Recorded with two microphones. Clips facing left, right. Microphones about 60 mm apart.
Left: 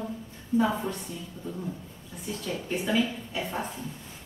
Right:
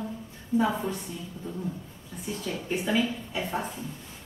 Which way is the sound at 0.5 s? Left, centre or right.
Centre.